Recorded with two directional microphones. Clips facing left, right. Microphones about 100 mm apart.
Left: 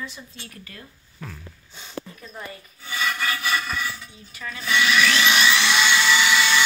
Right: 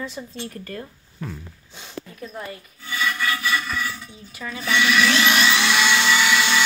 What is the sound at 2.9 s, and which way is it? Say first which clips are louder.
Rub: right 2 dB; 25° left (ahead or behind).